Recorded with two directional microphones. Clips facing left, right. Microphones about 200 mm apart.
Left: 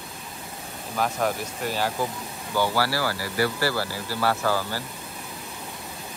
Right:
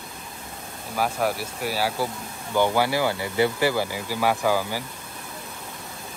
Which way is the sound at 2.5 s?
20° right (ahead or behind).